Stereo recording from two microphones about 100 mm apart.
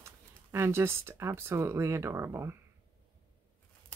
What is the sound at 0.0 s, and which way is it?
Speech, 25° right (ahead or behind).